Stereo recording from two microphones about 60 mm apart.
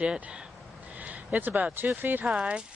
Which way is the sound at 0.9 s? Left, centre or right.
Right.